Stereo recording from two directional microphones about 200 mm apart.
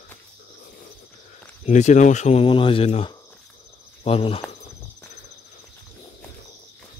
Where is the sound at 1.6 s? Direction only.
35° left (ahead or behind).